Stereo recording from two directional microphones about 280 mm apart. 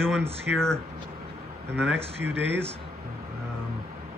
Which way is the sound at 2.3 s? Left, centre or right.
Right.